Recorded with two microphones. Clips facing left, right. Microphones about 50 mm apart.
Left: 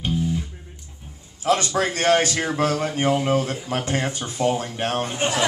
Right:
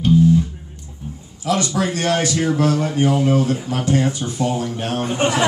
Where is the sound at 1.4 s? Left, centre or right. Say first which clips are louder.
Right 1 dB; left.